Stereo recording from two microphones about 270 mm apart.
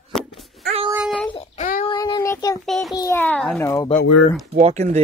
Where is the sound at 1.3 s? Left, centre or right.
Left.